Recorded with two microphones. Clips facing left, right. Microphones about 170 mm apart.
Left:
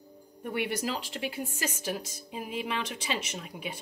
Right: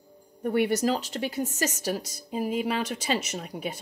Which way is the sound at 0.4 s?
40° right (ahead or behind).